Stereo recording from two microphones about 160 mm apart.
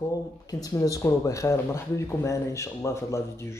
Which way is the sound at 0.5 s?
20° left (ahead or behind).